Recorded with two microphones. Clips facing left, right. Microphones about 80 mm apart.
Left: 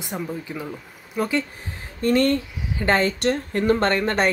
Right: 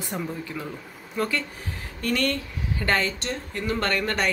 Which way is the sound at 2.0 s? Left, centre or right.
Left.